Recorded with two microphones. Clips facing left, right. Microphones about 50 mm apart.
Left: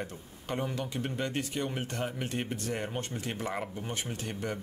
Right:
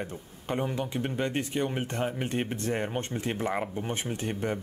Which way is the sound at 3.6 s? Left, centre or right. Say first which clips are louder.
Right 5 dB; centre.